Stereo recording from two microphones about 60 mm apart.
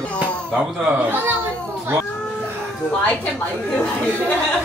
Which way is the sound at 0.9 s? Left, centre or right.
Right.